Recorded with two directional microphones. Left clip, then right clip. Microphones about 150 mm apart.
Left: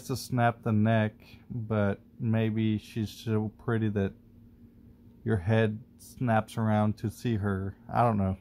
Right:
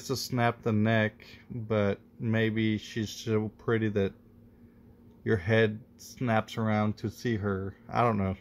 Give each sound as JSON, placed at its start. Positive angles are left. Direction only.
{"t": 0.1, "sound": "speech", "side_deg": 10}
{"t": 5.2, "sound": "speech", "side_deg": 10}